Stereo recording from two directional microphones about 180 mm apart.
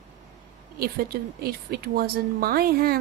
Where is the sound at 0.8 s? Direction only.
60° right (ahead or behind).